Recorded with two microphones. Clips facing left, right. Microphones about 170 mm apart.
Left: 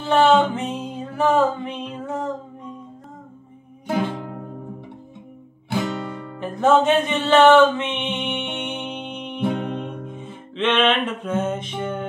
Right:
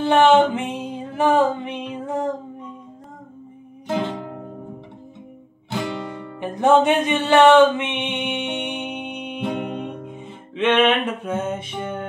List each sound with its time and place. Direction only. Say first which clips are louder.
0.0 s music: right 2 dB; 20° right (ahead or behind)
3.8 s music: left 1 dB; 10° left (ahead or behind)
5.9 s music: even; 15° right (ahead or behind)